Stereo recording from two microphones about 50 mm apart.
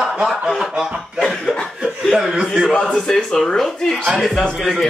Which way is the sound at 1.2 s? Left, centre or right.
Centre.